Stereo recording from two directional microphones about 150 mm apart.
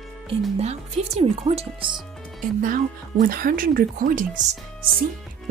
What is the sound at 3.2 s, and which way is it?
Speech, 70° right (ahead or behind).